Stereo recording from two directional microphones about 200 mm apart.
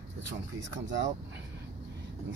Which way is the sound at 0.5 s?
65° right (ahead or behind).